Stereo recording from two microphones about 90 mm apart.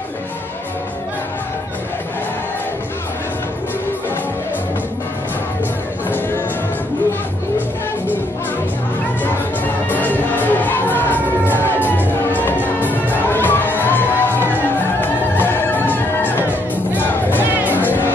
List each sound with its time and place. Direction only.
6.0 s music: 25° left (ahead or behind)
9.8 s music: 20° left (ahead or behind)
16.9 s music: 20° right (ahead or behind)
17.7 s music: 20° left (ahead or behind)